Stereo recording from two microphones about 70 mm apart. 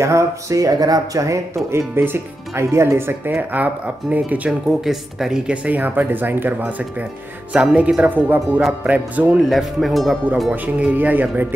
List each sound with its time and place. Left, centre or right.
0.0 s speech: right
4.5 s speech: centre
5.5 s speech: centre
9.4 s speech: centre
10.5 s speech: right